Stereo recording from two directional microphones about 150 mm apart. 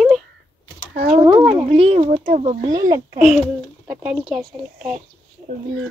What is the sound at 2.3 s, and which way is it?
Speech, 55° right (ahead or behind).